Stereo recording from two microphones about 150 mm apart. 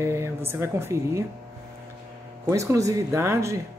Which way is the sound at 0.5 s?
15° right (ahead or behind).